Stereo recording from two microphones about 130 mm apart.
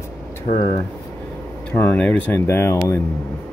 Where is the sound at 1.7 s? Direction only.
10° left (ahead or behind).